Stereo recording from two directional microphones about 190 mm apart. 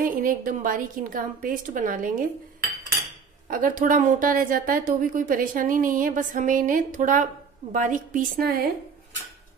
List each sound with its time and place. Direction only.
0.0 s a woman's voice: 45° right (ahead or behind)
3.4 s a woman's voice: 45° right (ahead or behind)